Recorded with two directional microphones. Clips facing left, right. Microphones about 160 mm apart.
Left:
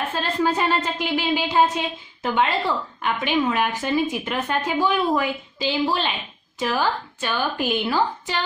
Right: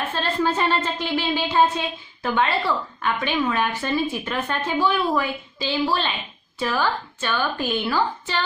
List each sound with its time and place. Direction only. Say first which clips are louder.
0.1 s a woman's voice: even; 15° left (ahead or behind)